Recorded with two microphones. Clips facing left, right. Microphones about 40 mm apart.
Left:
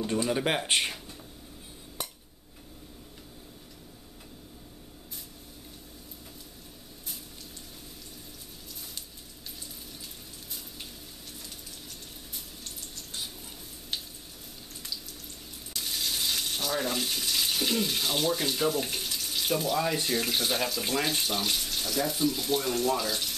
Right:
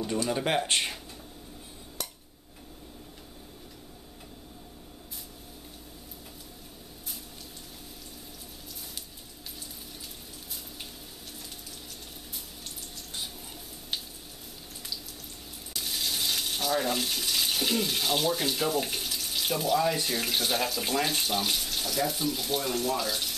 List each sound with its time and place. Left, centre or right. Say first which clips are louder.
0.0 s speech: left 1 dB; centre
2.0 s a sound: left 1 dB; centre
12.6 s water: right 1 dB; centre
15.7 s speech: even; centre